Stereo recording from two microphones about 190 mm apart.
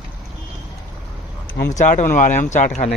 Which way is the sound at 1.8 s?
40° left (ahead or behind).